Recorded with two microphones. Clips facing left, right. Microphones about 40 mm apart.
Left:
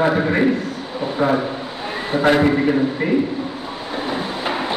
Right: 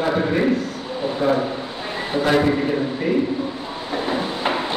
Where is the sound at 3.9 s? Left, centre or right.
Centre.